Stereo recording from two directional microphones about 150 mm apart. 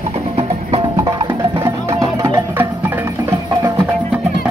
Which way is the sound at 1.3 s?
15° right (ahead or behind).